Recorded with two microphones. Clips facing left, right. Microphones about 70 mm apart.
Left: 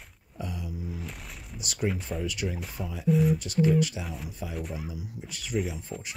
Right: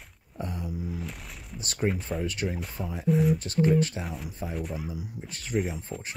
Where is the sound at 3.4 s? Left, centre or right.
Right.